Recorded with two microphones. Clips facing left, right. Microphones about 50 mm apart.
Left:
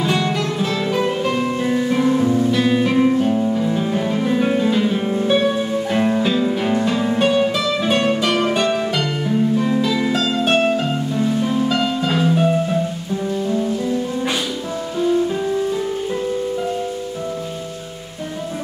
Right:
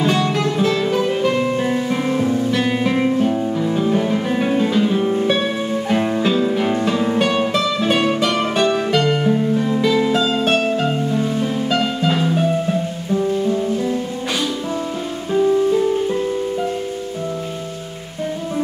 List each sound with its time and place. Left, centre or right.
0.0 s music: centre
1.3 s music: centre
4.6 s music: centre
11.4 s music: centre